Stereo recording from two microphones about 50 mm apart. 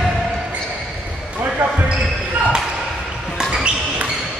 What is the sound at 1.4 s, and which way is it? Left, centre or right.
Basketball bounce, right.